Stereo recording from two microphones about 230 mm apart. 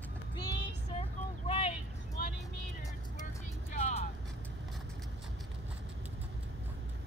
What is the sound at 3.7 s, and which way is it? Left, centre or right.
Music, left.